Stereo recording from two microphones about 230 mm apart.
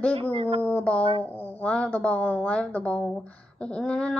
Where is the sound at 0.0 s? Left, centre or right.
Centre.